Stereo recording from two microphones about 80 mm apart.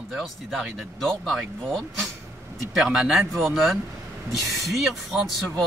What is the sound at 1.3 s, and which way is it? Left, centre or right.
Speech, centre.